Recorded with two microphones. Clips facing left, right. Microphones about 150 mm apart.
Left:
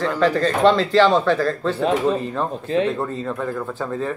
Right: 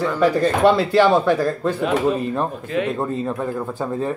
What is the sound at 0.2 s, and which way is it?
Speech, 10° right (ahead or behind).